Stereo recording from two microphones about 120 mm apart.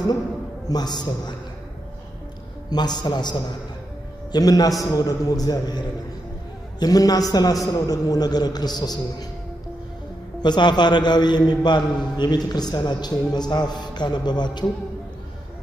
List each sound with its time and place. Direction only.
0.7 s a man's voice: 35° left (ahead or behind)
2.7 s a man's voice: 35° left (ahead or behind)
10.4 s a man's voice: 40° left (ahead or behind)